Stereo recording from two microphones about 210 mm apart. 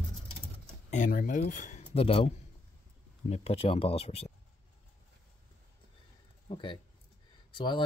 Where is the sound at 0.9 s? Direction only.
40° left (ahead or behind).